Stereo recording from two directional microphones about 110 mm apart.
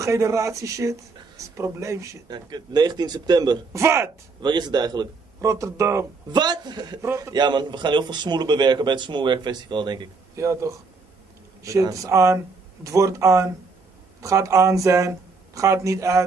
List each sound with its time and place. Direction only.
0.0 s speech: 30° right (ahead or behind)
3.7 s speech: 25° right (ahead or behind)
4.4 s speech: 40° right (ahead or behind)
5.4 s speech: 30° right (ahead or behind)
6.3 s speech: 40° right (ahead or behind)
7.0 s speech: 25° right (ahead or behind)
7.3 s a man's voice: 40° right (ahead or behind)
10.3 s speech: 25° right (ahead or behind)